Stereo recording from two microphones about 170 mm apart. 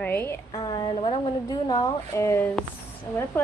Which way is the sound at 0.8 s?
35° left (ahead or behind).